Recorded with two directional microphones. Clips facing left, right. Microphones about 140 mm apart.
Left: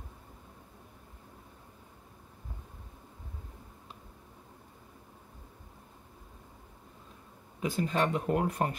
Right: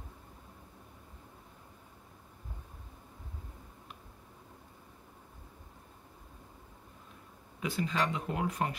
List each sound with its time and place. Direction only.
7.6 s speech: 45° left (ahead or behind)